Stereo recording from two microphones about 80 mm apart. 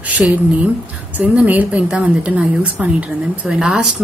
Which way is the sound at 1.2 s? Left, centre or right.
Centre.